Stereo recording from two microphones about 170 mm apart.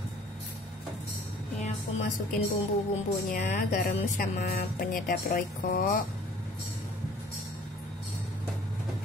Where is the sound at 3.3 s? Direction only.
45° left (ahead or behind).